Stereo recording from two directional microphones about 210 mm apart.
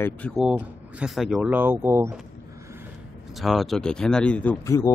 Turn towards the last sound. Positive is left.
turn(degrees=15)  # may be behind; listen again after turning